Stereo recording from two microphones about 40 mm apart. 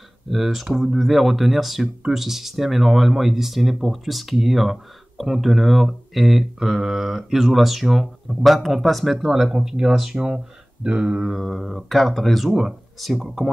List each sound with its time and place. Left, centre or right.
0.3 s speech: centre
10.1 s speech: right
11.2 s speech: centre